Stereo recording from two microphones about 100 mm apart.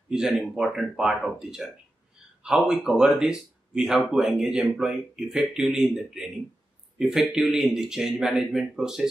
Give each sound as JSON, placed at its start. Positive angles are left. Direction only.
{"t": 0.1, "sound": "speech", "side_deg": -5}